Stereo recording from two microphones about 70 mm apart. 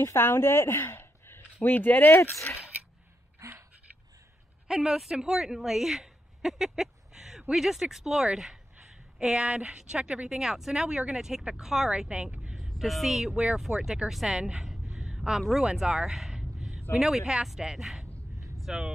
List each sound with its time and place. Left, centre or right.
0.0 s speech: left
3.3 s gasp: right
4.6 s a woman's voice: centre
12.5 s speech: centre